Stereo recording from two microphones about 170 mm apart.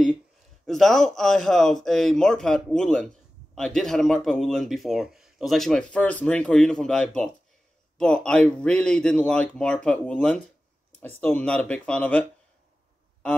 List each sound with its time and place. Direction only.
0.7 s speech: centre (ahead or behind)